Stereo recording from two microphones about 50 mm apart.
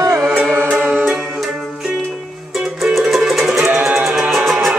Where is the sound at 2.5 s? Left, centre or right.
Centre.